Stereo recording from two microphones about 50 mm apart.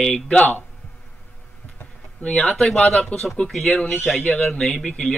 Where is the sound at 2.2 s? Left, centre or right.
Left.